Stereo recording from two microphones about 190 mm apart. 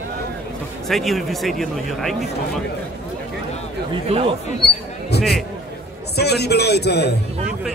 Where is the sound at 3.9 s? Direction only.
30° right (ahead or behind).